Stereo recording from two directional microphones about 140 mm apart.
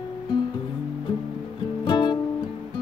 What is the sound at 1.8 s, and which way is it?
Music, 35° left (ahead or behind).